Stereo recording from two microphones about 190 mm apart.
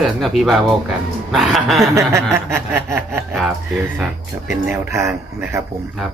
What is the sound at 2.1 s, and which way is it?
Speech, 15° right (ahead or behind).